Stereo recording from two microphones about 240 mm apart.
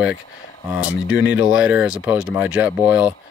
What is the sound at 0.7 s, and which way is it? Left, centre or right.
Speech, centre.